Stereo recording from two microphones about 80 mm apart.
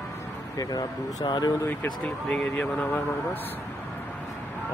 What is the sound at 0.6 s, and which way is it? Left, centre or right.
Speech, left.